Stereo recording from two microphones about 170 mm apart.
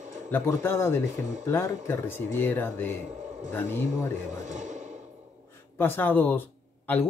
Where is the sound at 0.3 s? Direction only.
15° left (ahead or behind).